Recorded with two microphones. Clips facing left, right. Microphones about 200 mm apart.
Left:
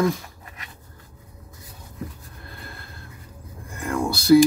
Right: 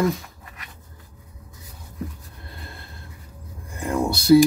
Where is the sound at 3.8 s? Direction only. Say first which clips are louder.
Right 2 dB; 25° right (ahead or behind).